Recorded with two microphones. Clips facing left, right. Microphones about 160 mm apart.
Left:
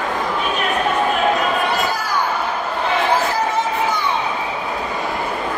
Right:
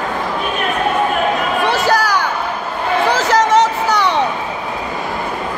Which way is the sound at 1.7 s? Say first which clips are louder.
Right 6 dB; 90° right.